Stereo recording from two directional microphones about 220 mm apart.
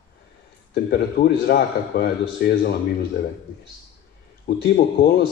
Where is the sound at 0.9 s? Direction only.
45° left (ahead or behind).